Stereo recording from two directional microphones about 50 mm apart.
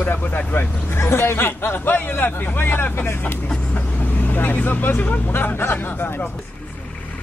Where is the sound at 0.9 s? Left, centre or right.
Left.